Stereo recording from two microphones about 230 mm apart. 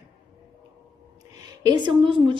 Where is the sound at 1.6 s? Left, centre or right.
Right.